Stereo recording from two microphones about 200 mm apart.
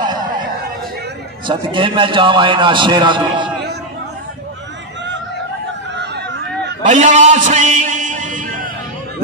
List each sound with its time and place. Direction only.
1.5 s a man's voice: 25° right (ahead or behind)
5.9 s chatter: 60° right (ahead or behind)
6.8 s a sound: 35° right (ahead or behind)